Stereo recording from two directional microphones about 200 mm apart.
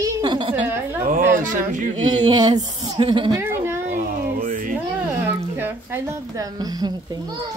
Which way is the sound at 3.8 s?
40° right (ahead or behind).